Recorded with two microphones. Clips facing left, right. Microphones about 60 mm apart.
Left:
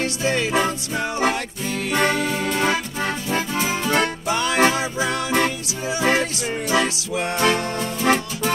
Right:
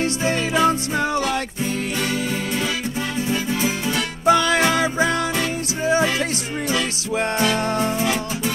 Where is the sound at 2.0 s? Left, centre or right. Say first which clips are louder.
Left 3 dB; left.